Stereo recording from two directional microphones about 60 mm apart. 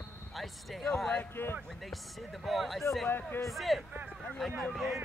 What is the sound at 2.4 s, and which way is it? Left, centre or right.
Speech, centre.